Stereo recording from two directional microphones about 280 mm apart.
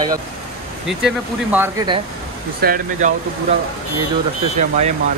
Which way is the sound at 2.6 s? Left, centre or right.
Right.